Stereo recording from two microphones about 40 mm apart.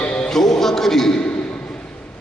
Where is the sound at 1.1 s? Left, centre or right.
Left.